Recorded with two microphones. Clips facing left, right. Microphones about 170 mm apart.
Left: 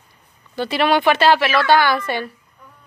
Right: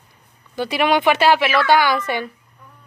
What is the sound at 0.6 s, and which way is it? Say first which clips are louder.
A woman's voice: even; 15° right (ahead or behind).